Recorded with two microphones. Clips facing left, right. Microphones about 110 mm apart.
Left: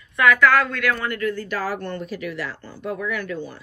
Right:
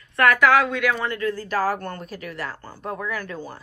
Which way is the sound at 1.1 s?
30° right (ahead or behind).